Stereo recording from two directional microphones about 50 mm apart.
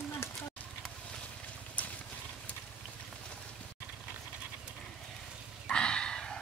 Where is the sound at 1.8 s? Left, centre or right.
Left.